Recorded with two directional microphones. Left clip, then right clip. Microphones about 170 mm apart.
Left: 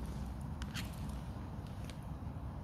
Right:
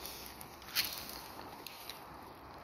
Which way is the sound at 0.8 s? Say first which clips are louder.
Right 11 dB; 75° right (ahead or behind).